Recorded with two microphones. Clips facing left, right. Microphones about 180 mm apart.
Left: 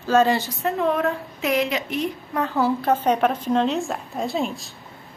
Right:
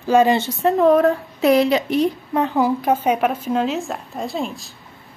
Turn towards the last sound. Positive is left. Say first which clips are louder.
# even
turn(degrees=0)  # may be behind; listen again after turning